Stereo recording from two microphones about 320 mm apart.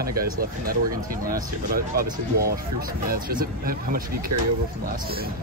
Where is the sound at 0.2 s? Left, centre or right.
Right.